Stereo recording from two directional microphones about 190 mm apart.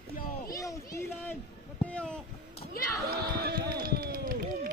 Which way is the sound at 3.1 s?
55° right (ahead or behind).